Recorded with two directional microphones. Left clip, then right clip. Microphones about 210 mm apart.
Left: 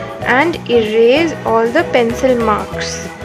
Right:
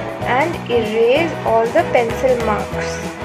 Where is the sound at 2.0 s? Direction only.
Centre (ahead or behind).